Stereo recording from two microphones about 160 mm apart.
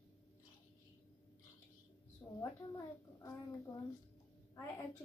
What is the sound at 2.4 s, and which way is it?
Speech, 20° left (ahead or behind).